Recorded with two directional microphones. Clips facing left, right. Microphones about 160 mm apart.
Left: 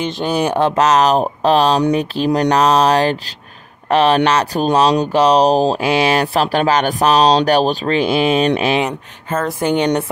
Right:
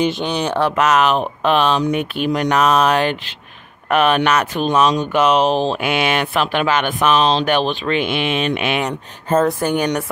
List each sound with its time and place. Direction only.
0.1 s speech: 5° left (ahead or behind)
0.7 s speech: 35° left (ahead or behind)
9.6 s speech: 20° left (ahead or behind)